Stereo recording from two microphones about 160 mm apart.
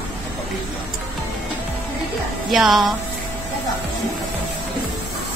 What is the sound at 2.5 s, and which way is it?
Speech, centre (ahead or behind).